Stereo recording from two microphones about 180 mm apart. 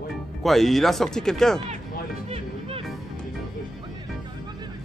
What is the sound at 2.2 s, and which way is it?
Music, 35° right (ahead or behind).